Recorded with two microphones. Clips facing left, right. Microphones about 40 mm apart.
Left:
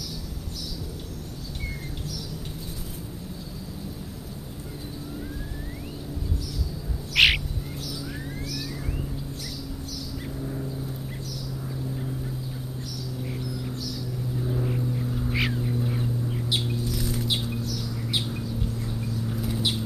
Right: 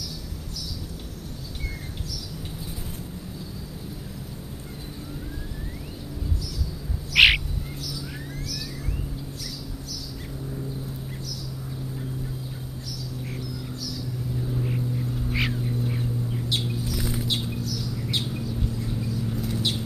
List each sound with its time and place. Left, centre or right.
7.2 s bird: centre
10.4 s vehicle: centre
14.6 s vehicle: centre
16.0 s bird: centre
16.9 s a sound: right
17.3 s a sound: centre